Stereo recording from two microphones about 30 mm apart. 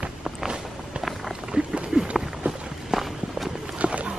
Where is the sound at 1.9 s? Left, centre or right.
Right.